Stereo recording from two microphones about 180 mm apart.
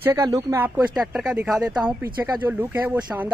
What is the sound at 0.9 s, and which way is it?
Speech, centre (ahead or behind).